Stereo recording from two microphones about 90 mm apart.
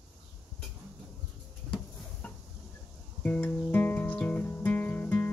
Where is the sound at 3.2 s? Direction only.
15° left (ahead or behind).